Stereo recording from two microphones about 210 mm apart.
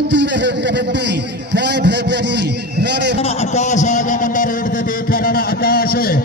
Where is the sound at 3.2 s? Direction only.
30° left (ahead or behind).